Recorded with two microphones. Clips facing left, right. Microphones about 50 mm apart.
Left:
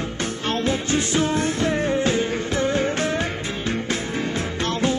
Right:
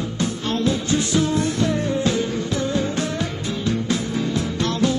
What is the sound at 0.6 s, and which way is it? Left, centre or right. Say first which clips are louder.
Music: right 2 dB; left.